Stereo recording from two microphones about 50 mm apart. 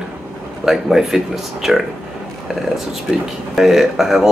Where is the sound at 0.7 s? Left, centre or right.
Centre.